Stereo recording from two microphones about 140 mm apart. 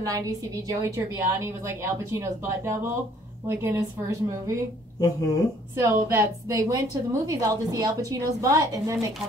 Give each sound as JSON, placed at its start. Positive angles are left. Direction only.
{"t": 0.0, "sound": "a woman's voice", "side_deg": -25}
{"t": 5.8, "sound": "a woman's voice", "side_deg": -20}